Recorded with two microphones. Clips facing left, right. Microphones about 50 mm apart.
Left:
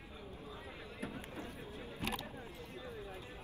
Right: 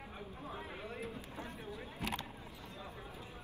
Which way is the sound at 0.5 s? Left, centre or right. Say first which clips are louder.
Right 4 dB; right.